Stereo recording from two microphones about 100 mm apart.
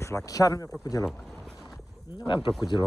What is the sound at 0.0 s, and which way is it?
Speech, 30° left (ahead or behind).